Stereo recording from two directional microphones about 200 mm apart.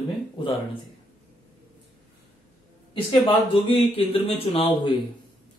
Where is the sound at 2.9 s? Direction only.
25° left (ahead or behind).